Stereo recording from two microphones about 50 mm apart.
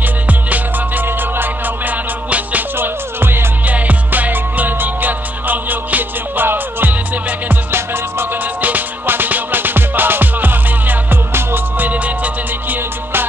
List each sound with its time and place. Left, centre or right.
0.3 s music: right
1.0 s music: right
1.9 s music: right
2.8 s music: right
3.6 s music: right
7.7 s music: right
8.5 s music: right
11.9 s music: right